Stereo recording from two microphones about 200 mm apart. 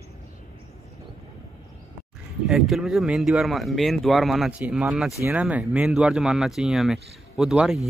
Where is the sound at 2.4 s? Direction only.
Centre (ahead or behind).